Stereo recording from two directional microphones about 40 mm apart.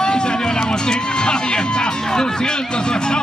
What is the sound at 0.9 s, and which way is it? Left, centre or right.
Music, centre.